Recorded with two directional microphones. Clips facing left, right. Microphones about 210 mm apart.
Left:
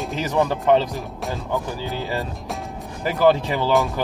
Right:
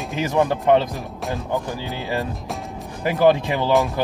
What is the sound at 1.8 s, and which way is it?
Speech, 15° right (ahead or behind).